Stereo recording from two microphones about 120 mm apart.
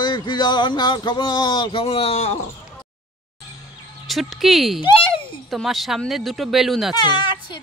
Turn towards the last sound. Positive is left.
turn(degrees=40)  # may be behind; listen again after turning